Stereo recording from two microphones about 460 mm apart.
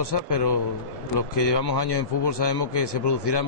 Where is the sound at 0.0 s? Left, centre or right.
Left.